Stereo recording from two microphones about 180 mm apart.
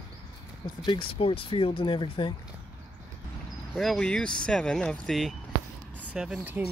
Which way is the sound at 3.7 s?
Centre (ahead or behind).